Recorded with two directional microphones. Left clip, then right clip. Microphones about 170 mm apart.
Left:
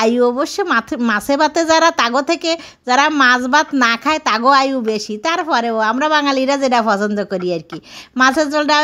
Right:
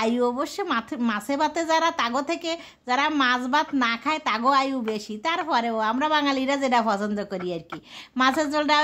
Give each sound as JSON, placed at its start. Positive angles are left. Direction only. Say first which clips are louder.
{"t": 0.0, "sound": "speech", "louder": "left 10 dB", "side_deg": 35}